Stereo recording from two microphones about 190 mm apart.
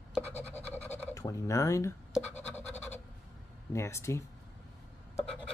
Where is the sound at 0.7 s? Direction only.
10° left (ahead or behind).